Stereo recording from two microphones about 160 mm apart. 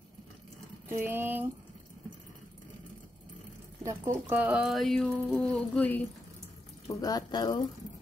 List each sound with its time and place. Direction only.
0.8 s speech: 15° right (ahead or behind)
3.8 s speech: 15° right (ahead or behind); by 6.0 s 10° left (ahead or behind)
6.9 s speech: 25° left (ahead or behind)